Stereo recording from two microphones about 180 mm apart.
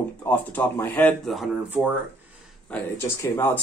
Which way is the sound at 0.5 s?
10° left (ahead or behind).